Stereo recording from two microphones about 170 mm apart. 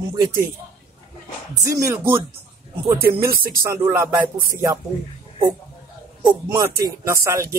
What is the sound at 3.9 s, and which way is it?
Speech, 15° right (ahead or behind).